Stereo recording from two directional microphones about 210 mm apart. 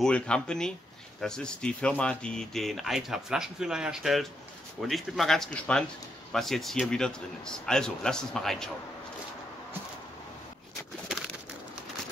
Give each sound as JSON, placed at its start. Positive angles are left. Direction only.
{"t": 0.0, "sound": "speech", "side_deg": 5}